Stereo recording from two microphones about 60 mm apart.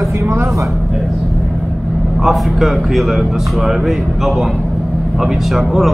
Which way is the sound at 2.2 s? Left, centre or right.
Centre.